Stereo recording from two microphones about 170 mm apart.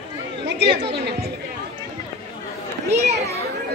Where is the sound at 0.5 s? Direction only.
90° right.